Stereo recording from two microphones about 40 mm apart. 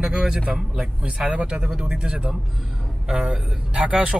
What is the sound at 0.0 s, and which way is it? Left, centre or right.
Speech, centre.